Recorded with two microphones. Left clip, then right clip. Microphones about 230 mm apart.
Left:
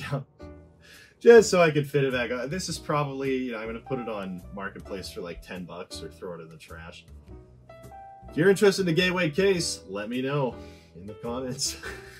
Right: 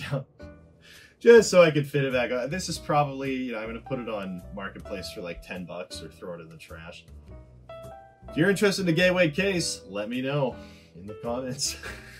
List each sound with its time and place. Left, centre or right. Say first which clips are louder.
1.2 s speech: even; centre
8.3 s speech: left 3 dB; centre